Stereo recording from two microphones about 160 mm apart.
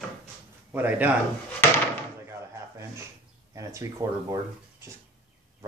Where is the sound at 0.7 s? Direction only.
10° right (ahead or behind).